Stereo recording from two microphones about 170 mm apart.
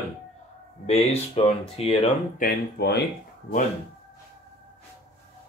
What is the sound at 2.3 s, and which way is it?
Speech, 65° left (ahead or behind).